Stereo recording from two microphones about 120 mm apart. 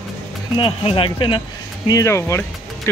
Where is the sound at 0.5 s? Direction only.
45° left (ahead or behind).